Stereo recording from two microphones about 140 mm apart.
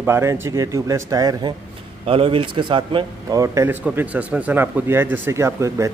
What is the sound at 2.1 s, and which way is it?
A man's voice, 40° right (ahead or behind).